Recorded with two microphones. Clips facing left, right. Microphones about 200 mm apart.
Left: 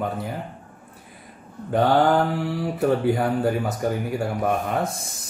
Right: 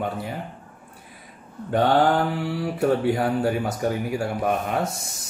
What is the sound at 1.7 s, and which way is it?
Speech, centre (ahead or behind).